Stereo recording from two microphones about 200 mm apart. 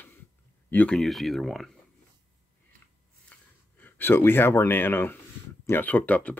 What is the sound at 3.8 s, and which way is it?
Speech, 10° left (ahead or behind).